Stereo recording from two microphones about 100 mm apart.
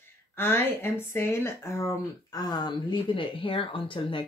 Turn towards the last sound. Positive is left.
turn(degrees=55)  # may be behind; listen again after turning